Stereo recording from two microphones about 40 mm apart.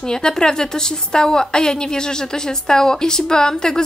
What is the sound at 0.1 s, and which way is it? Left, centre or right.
A woman's voice, centre.